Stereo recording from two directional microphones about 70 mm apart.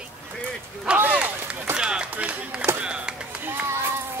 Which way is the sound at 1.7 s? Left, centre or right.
Centre.